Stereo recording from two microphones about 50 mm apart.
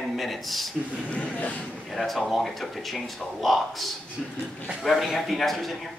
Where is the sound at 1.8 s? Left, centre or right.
Centre.